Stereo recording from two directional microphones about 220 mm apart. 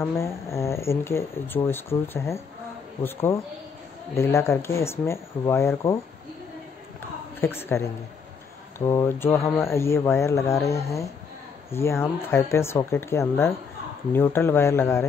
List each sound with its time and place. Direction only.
0.0 s speech: 10° left (ahead or behind)
7.3 s a woman's voice: 10° left (ahead or behind)